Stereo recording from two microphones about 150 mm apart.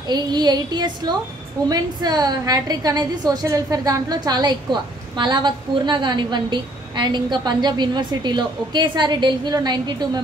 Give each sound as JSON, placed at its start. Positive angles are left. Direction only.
{"t": 0.1, "sound": "a woman's voice", "side_deg": -30}